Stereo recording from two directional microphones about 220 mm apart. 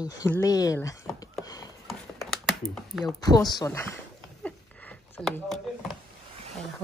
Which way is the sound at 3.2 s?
15° left (ahead or behind).